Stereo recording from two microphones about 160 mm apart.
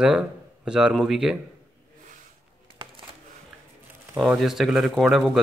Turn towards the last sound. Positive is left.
turn(degrees=0)  # may be behind; listen again after turning